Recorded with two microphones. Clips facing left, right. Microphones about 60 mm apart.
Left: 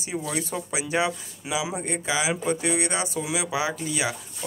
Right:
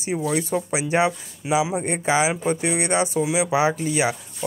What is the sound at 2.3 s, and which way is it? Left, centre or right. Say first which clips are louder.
Speech: right 2 dB; right.